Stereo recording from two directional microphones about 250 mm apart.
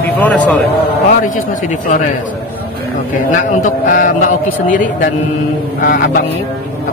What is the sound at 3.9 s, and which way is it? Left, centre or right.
Speech, left.